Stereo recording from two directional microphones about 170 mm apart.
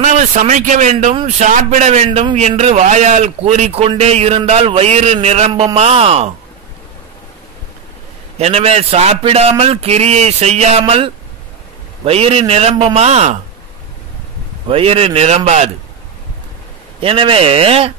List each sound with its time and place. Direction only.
0.0 s speech: 45° right (ahead or behind)
5.5 s a man's voice: 25° right (ahead or behind)
5.8 s speech: 35° right (ahead or behind)
8.4 s speech: 40° right (ahead or behind)
14.7 s speech: 35° right (ahead or behind)
17.0 s speech: 30° right (ahead or behind)